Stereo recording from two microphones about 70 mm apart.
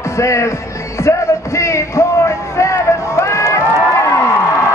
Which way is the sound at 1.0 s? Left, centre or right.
Left.